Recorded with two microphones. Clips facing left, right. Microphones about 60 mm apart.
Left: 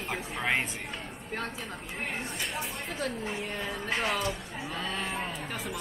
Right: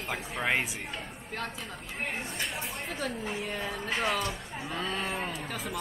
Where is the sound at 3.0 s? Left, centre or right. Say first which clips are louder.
Left 1 dB; centre.